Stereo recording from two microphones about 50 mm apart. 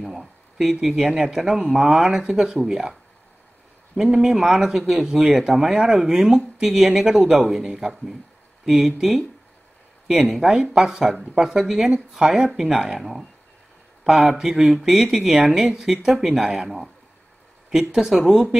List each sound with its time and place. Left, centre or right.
0.0 s speech: centre